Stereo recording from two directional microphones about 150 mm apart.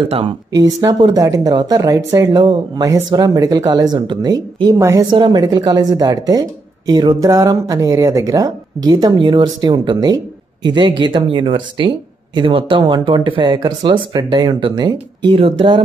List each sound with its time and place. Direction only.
0.6 s speech: 25° right (ahead or behind)